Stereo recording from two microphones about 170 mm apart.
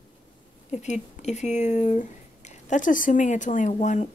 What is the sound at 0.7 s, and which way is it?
Speech, 45° left (ahead or behind).